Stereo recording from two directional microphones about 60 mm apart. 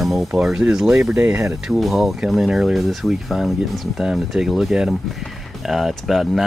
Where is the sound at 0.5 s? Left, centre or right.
Centre.